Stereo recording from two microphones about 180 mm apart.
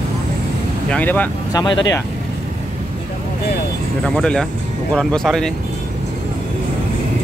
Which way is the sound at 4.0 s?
5° left (ahead or behind).